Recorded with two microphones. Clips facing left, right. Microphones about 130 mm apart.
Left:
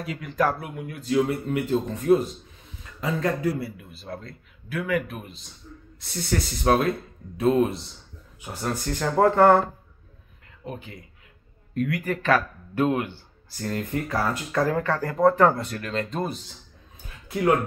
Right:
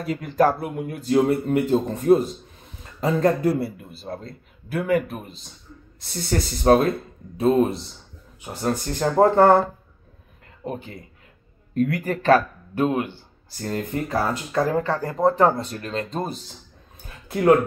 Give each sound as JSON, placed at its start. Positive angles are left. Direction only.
{"t": 0.0, "sound": "speech", "side_deg": -40}
{"t": 4.0, "sound": "speech", "side_deg": -30}
{"t": 10.6, "sound": "speech", "side_deg": -40}
{"t": 17.3, "sound": "speech", "side_deg": -45}